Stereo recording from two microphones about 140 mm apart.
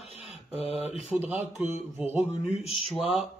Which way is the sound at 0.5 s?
45° left (ahead or behind).